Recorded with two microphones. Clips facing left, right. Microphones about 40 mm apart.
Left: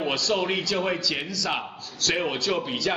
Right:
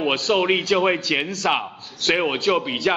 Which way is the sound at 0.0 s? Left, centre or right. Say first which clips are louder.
Right 5 dB; right.